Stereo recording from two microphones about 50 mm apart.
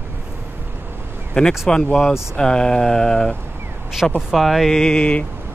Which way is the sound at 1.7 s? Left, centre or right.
Centre.